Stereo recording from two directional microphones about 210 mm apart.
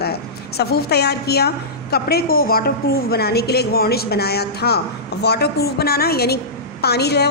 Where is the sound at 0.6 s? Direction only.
50° left (ahead or behind).